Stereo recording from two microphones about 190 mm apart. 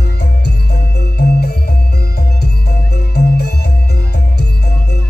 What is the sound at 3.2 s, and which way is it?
Music, 60° left (ahead or behind).